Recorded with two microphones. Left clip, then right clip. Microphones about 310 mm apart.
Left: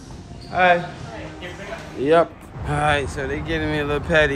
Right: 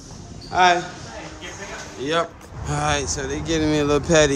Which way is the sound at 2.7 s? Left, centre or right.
Centre.